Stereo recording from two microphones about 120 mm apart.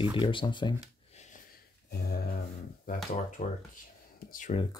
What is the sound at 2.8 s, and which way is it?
Speech, 90° left.